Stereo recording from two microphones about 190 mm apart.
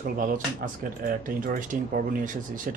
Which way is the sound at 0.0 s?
45° right (ahead or behind).